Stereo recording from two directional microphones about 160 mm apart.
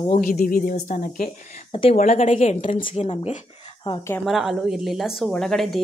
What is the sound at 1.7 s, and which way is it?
A woman's voice, 40° left (ahead or behind).